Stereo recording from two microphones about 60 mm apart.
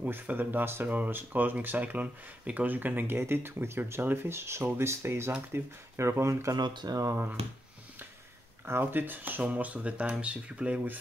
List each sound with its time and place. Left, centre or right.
0.0 s speech: right
6.5 s speech: right
8.6 s speech: right; by 10.8 s centre